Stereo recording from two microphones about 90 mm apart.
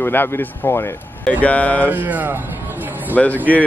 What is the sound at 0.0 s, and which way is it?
Speech, 25° left (ahead or behind).